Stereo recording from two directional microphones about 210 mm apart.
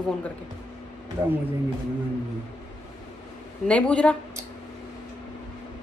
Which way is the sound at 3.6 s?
5° left (ahead or behind).